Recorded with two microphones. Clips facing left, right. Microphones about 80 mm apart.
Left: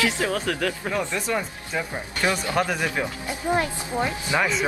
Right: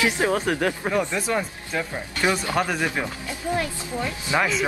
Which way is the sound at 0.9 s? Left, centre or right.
Centre.